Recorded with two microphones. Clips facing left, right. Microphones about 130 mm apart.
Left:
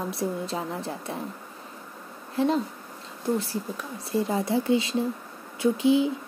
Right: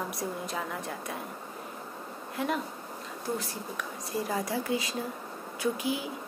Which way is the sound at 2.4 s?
30° left (ahead or behind).